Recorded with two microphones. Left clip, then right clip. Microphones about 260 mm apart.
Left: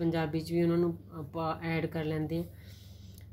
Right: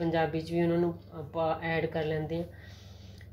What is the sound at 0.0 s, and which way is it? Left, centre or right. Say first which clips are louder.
Speech: right 3 dB; left.